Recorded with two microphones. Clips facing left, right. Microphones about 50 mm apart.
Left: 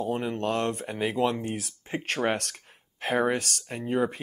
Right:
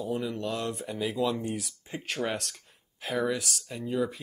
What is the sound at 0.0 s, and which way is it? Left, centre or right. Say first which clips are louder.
Speech: left 3 dB; left.